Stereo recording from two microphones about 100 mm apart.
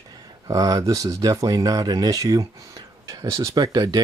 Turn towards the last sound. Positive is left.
turn(degrees=-40)  # may be behind; listen again after turning